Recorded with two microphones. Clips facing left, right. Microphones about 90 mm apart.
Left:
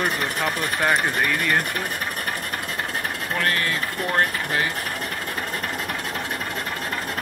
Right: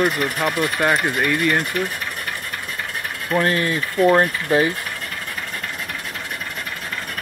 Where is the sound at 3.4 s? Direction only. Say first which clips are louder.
Right 5 dB; 20° right (ahead or behind).